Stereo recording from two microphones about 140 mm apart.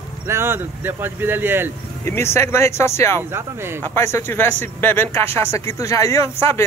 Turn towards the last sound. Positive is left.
turn(degrees=20)  # may be behind; listen again after turning